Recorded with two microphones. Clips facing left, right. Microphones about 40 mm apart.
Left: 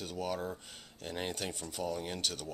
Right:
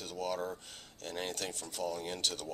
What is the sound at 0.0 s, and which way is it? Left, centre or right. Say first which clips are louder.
Speech: even; centre.